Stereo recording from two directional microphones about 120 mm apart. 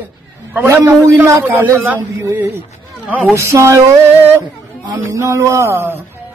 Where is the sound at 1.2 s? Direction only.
20° right (ahead or behind).